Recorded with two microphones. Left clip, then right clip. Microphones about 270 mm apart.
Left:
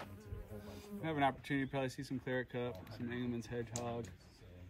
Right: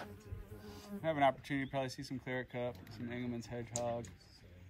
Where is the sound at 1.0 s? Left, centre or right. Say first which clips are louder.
Right 4 dB; right.